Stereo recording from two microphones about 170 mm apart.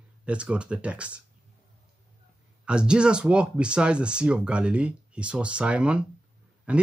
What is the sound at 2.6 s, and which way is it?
Speech, 5° right (ahead or behind).